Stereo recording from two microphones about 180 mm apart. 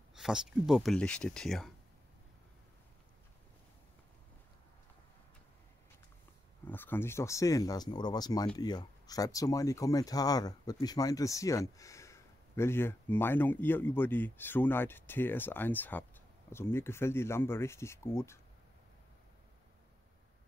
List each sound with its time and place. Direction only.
0.1 s speech: 5° right (ahead or behind)
6.6 s speech: 10° left (ahead or behind)